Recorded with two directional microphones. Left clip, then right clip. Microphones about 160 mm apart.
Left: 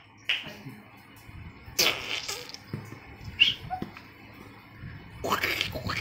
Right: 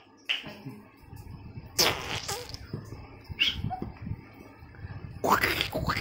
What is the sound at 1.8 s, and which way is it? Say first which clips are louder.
Fart: left 1 dB; 30° right (ahead or behind).